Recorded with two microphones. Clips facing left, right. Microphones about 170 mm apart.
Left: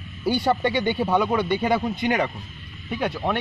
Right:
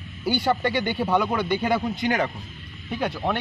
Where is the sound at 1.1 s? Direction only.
5° left (ahead or behind).